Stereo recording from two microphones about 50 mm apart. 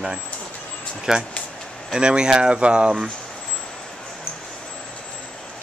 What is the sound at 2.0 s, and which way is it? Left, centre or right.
Speech, centre.